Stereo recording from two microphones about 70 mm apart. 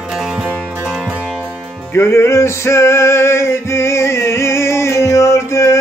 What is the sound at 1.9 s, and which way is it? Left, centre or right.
Music, left.